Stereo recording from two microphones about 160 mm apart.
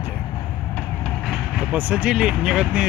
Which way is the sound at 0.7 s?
5° left (ahead or behind).